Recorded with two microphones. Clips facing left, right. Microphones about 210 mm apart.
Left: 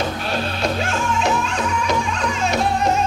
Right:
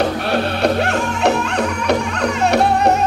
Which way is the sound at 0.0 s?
60° right (ahead or behind).